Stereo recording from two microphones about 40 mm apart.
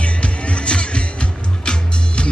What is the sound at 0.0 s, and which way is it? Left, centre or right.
Music, left.